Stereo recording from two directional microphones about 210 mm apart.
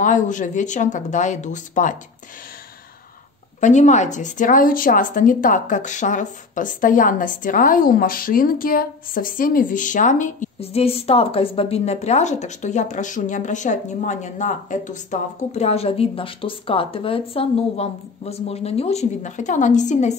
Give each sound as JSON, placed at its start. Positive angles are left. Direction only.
{"t": 0.0, "sound": "a woman's voice", "side_deg": 35}
{"t": 3.6, "sound": "a woman's voice", "side_deg": 35}